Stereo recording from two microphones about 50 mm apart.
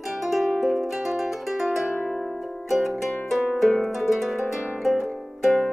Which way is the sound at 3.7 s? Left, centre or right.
Centre.